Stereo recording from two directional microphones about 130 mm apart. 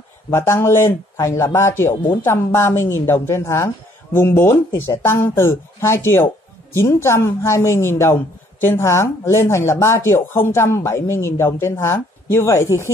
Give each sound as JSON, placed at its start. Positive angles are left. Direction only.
{"t": 0.3, "sound": "a woman's voice", "side_deg": 20}